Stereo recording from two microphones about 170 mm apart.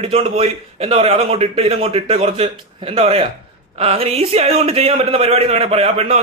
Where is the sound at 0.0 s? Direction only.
35° right (ahead or behind).